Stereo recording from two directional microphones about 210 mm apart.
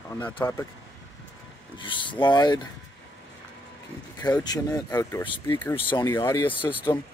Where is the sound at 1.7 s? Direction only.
25° left (ahead or behind).